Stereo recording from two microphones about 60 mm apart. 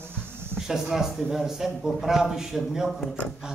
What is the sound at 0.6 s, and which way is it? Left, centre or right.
A man's voice, centre.